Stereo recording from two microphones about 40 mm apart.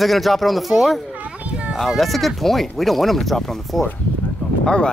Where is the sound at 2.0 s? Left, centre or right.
Centre.